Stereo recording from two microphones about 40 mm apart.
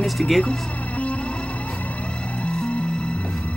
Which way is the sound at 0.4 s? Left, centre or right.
Left.